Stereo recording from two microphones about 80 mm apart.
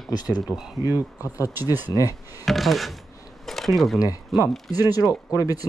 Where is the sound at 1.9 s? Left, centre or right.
Left.